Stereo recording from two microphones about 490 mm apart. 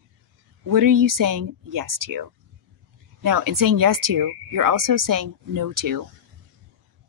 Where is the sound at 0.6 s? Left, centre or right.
Right.